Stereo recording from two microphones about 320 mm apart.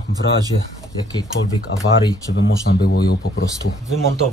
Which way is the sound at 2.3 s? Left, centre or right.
Left.